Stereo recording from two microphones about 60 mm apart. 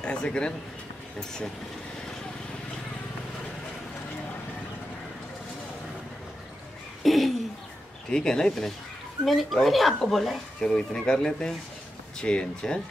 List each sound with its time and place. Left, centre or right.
0.0 s speech: centre
7.0 s a sound: centre
8.1 s speech: centre
10.6 s speech: centre